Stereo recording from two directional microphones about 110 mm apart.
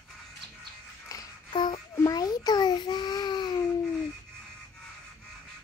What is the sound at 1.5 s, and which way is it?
Music, 45° left (ahead or behind).